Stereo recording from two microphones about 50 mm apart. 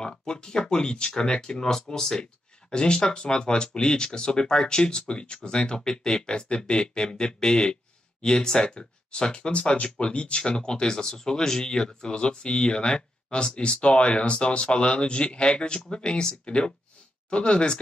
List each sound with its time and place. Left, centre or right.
0.0 s speech: centre